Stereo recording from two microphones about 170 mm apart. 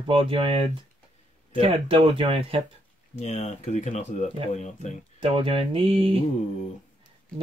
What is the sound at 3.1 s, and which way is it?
Speech, 40° left (ahead or behind).